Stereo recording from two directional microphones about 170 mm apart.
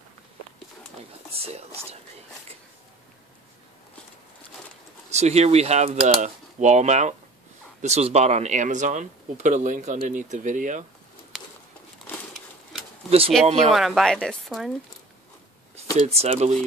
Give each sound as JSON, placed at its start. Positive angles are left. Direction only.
{"t": 1.3, "sound": "speech", "side_deg": -35}
{"t": 5.1, "sound": "speech", "side_deg": -40}
{"t": 11.3, "sound": "a sound", "side_deg": 0}
{"t": 13.4, "sound": "speech", "side_deg": 5}
{"t": 16.1, "sound": "speech", "side_deg": -35}